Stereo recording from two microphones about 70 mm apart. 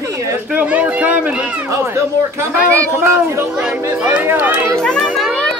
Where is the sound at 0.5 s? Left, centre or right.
Centre.